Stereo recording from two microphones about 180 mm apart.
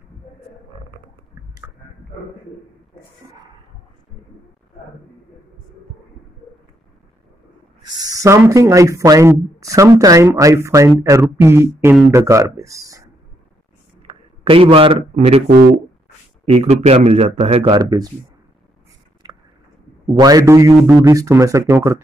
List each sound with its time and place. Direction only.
7.8 s speech: 20° right (ahead or behind)
14.0 s a man's voice: 30° right (ahead or behind)
15.4 s speech: 55° right (ahead or behind)
16.4 s speech: 35° right (ahead or behind)
19.2 s a sound: 25° right (ahead or behind)
20.2 s speech: 20° right (ahead or behind)